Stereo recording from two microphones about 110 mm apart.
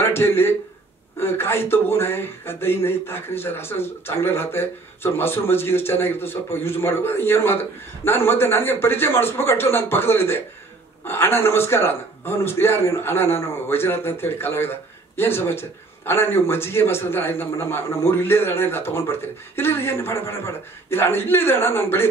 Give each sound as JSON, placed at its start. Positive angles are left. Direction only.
{"t": 0.0, "sound": "speech", "side_deg": 20}